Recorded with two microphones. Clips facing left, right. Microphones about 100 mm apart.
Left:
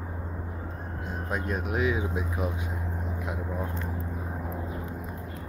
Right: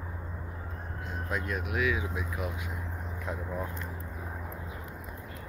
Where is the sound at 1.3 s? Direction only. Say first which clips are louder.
Left 3 dB; 30° left (ahead or behind).